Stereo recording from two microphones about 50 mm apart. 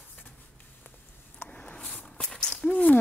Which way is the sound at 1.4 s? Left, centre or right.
Left.